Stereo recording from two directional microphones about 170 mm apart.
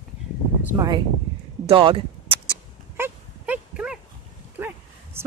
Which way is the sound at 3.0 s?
10° right (ahead or behind).